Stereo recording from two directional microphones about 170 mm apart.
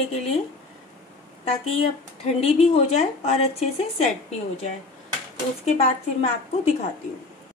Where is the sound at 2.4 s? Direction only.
35° left (ahead or behind).